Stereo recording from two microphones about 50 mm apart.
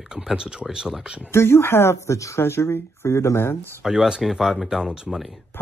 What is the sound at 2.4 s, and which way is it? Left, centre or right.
Speech, left.